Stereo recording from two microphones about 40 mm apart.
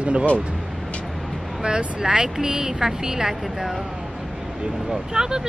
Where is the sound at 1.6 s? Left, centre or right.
Centre.